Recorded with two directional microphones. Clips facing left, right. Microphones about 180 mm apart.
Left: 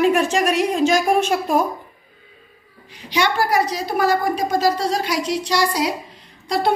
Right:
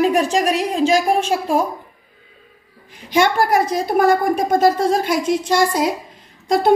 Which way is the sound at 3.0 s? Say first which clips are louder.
Right 4 dB; 50° right (ahead or behind).